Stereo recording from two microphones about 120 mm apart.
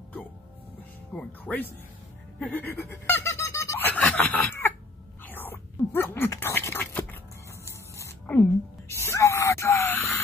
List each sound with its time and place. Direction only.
1.1 s speech: 15° left (ahead or behind)
2.5 s squeak: 20° left (ahead or behind)
4.2 s chicken: 15° left (ahead or behind)
5.2 s a sound: 15° left (ahead or behind)